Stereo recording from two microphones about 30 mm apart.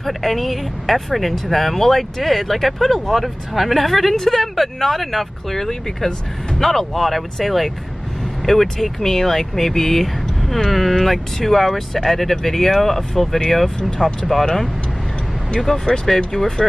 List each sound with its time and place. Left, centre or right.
0.0 s speech: centre